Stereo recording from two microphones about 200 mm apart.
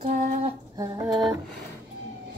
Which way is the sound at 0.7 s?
20° right (ahead or behind).